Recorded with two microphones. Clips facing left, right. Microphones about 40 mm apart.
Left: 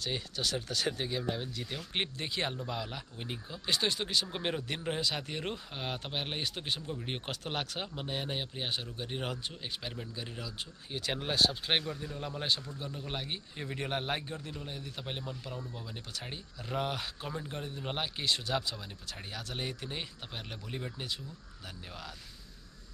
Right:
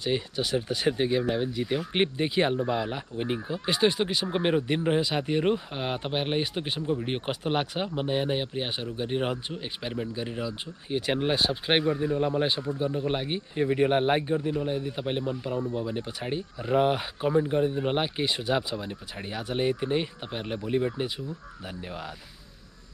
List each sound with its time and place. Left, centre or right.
0.0 s speech: centre